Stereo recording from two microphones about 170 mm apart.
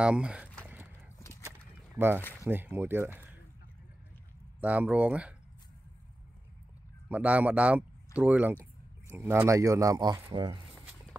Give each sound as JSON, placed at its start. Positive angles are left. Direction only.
{"t": 0.0, "sound": "speech", "side_deg": -5}
{"t": 0.7, "sound": "dog", "side_deg": -10}
{"t": 2.0, "sound": "speech", "side_deg": -10}
{"t": 4.6, "sound": "speech", "side_deg": -10}
{"t": 7.1, "sound": "speech", "side_deg": -10}